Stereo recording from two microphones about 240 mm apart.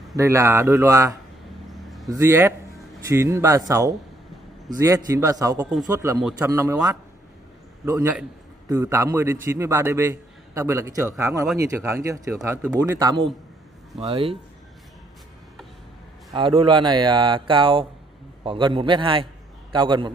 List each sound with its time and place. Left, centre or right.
0.1 s a man's voice: centre
1.7 s vehicle: centre
2.0 s a man's voice: centre
16.3 s speech: right